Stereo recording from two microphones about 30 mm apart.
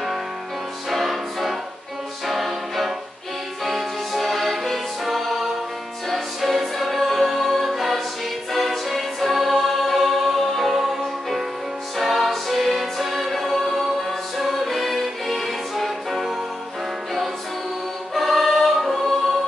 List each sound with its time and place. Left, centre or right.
0.8 s music: centre
2.2 s choir: centre
3.6 s music: centre
10.7 s music: centre
18.1 s music: centre